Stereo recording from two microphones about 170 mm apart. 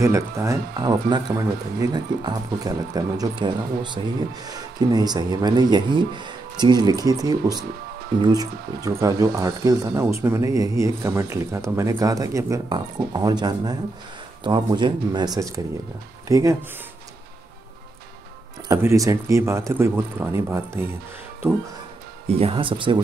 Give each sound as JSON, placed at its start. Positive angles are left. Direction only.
{"t": 0.0, "sound": "speech", "side_deg": -15}
{"t": 18.7, "sound": "speech", "side_deg": -15}
{"t": 22.4, "sound": "speech", "side_deg": -30}